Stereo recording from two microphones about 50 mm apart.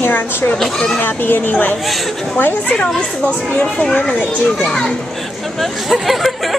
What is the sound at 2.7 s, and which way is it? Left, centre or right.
A child's voice, centre.